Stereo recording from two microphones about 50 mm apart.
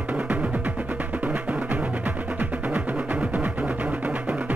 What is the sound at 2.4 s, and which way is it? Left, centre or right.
Music, right.